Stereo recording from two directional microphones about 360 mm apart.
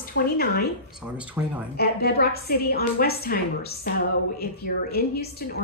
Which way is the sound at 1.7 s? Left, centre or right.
Left.